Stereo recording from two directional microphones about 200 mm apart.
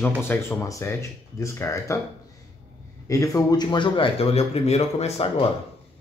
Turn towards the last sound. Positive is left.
turn(degrees=30)  # may be behind; listen again after turning